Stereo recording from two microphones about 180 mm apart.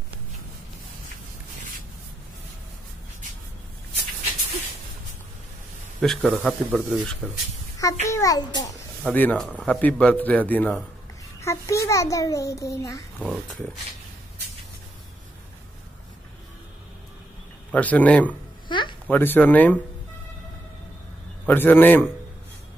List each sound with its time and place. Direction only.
5.9 s speech: centre (ahead or behind)
7.8 s a child's voice: 20° left (ahead or behind)
9.0 s a man's voice: 10° left (ahead or behind)
13.2 s speech: centre (ahead or behind)
17.6 s a man's voice: 10° left (ahead or behind)
18.7 s babbling: 25° left (ahead or behind)
19.0 s a man's voice: 10° left (ahead or behind)
21.5 s a man's voice: 10° left (ahead or behind)